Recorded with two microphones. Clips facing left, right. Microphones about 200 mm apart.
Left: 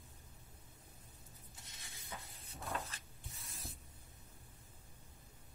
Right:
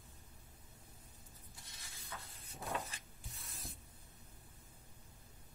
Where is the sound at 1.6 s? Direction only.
20° left (ahead or behind).